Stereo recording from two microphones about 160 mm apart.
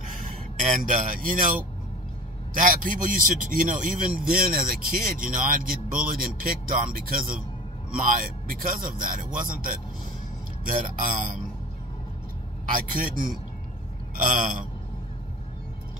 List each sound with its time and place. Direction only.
0.8 s a man's voice: 55° right (ahead or behind)
12.7 s a man's voice: 55° right (ahead or behind)